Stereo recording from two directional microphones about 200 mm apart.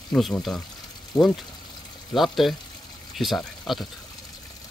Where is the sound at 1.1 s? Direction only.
20° left (ahead or behind).